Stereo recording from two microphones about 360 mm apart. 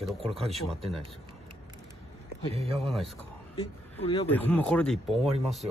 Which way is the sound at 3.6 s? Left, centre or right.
Centre.